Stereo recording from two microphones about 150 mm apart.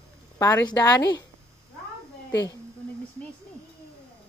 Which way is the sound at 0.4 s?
20° left (ahead or behind).